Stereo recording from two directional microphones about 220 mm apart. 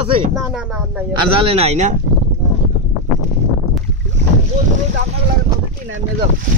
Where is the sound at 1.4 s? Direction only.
25° right (ahead or behind).